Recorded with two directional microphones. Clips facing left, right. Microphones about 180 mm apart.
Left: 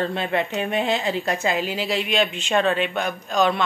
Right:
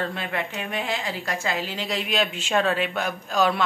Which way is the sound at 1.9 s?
Centre (ahead or behind).